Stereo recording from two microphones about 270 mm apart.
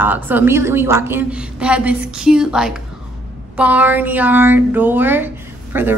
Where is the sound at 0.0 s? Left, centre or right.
Centre.